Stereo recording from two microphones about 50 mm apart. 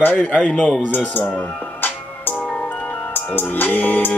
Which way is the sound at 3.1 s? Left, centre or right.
Left.